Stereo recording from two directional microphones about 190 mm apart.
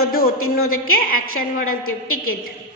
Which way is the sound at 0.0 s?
50° left (ahead or behind).